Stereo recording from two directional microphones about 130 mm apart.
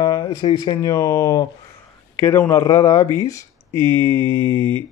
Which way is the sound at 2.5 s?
30° left (ahead or behind).